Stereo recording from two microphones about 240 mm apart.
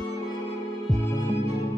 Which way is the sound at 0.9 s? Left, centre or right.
Centre.